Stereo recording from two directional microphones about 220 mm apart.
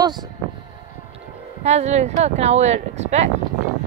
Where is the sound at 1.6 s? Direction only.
30° right (ahead or behind).